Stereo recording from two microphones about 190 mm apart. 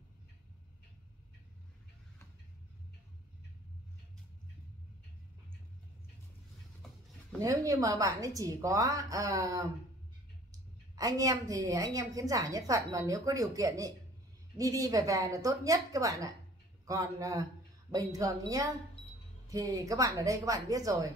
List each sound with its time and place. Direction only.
7.3 s a woman's voice: 15° right (ahead or behind)